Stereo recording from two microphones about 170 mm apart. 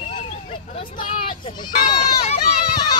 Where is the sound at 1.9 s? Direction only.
35° left (ahead or behind).